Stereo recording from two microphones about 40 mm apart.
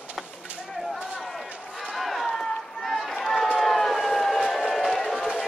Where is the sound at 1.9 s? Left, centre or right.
Centre.